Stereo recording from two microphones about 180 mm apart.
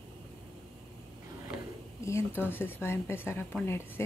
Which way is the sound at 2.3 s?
10° right (ahead or behind).